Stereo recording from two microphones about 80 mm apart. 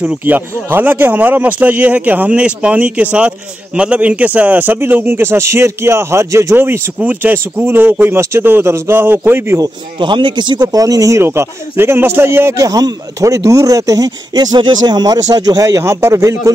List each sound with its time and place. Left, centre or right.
0.2 s speech: right
9.9 s speech: right
10.7 s speech: right
11.2 s speech: right
12.5 s speech: right
15.2 s speech: right